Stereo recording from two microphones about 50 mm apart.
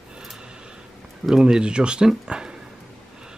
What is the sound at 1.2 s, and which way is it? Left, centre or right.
Speech, centre.